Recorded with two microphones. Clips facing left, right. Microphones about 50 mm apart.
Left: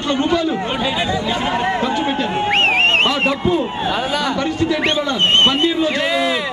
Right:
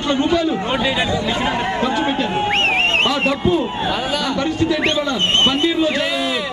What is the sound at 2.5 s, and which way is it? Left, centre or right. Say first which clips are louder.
Speech: left 4 dB; centre.